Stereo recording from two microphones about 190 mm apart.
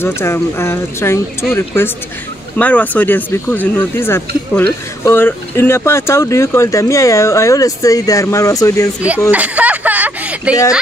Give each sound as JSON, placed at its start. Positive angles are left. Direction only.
{"t": 0.0, "sound": "speech", "side_deg": 15}
{"t": 2.5, "sound": "speech", "side_deg": 10}
{"t": 9.3, "sound": "a sound", "side_deg": -10}